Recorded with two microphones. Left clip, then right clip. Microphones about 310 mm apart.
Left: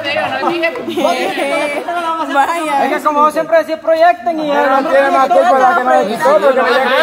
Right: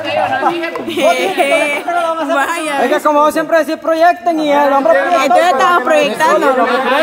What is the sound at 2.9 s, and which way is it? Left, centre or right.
Speech, right.